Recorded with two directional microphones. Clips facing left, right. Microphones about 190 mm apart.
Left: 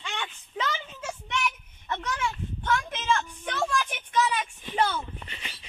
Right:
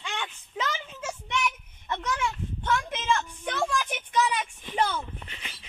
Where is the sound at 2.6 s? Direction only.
15° right (ahead or behind).